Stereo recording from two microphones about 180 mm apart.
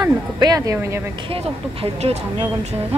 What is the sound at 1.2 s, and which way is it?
Speech, 30° right (ahead or behind).